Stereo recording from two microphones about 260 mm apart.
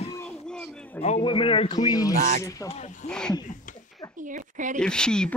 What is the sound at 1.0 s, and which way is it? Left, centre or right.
Speech, left.